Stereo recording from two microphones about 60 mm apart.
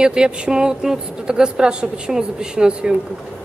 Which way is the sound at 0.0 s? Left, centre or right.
Centre.